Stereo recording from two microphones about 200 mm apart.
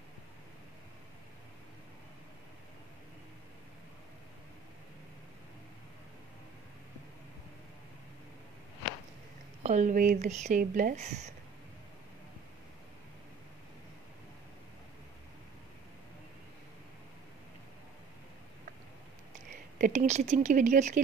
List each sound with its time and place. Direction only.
9.6 s speech: 35° right (ahead or behind)
19.8 s speech: 40° right (ahead or behind)